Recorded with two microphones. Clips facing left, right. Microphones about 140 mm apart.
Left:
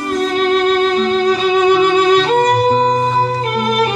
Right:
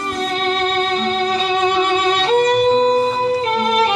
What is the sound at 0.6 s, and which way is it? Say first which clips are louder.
Music: left 5 dB; 30° right (ahead or behind).